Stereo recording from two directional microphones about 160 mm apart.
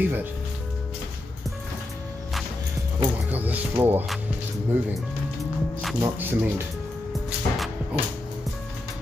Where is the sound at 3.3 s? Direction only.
10° right (ahead or behind).